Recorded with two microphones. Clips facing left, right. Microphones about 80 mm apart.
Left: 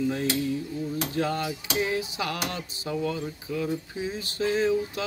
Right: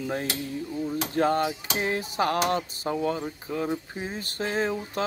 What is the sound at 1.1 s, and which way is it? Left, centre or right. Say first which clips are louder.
Speech: right 6 dB; right.